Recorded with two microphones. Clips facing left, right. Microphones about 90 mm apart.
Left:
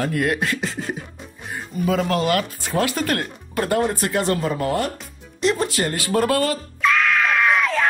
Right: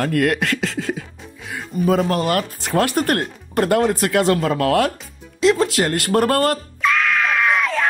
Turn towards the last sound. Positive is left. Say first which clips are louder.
# even
turn(degrees=0)  # may be behind; listen again after turning